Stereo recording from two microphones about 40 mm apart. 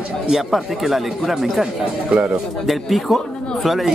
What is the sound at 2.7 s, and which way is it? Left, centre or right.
Speech, centre.